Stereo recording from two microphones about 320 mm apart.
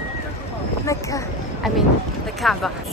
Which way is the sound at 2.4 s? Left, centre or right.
Centre.